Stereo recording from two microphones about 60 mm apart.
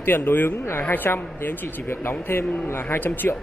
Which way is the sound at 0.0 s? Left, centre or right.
Left.